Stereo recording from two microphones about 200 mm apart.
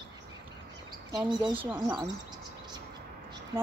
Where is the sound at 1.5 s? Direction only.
10° right (ahead or behind).